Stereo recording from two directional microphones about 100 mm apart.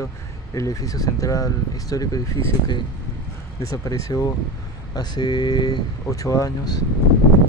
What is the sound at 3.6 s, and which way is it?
Speech, 35° left (ahead or behind).